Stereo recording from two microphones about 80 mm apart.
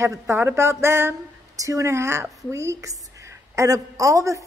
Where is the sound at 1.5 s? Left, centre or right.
Right.